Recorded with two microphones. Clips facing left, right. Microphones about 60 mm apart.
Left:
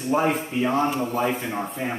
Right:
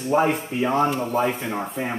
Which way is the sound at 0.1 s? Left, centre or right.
Centre.